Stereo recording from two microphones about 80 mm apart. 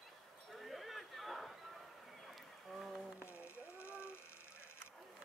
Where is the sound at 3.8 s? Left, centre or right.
Left.